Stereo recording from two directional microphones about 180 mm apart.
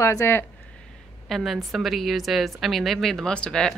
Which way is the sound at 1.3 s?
Centre (ahead or behind).